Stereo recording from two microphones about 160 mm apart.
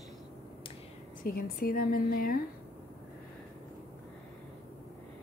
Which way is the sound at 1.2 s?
65° left (ahead or behind).